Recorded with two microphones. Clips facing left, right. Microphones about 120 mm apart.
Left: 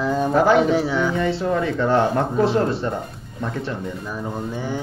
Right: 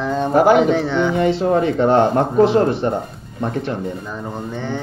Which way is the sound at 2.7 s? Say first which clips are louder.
Right 5 dB; 20° right (ahead or behind).